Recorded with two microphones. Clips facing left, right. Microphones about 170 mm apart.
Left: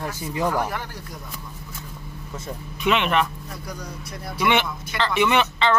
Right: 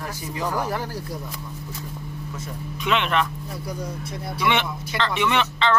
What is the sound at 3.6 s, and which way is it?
Speech, 25° right (ahead or behind).